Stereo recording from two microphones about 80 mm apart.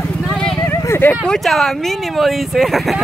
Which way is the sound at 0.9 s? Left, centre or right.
Left.